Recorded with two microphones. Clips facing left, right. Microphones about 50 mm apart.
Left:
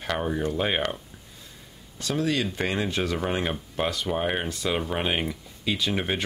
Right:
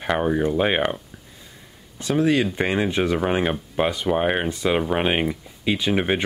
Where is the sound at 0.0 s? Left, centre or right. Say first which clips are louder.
Right 6 dB; right.